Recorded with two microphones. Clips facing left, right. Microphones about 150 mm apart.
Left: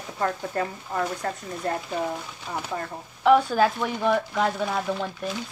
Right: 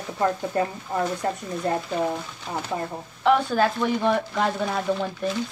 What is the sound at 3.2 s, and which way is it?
Speech, 5° left (ahead or behind).